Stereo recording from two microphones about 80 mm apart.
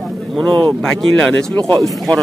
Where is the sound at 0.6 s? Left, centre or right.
Centre.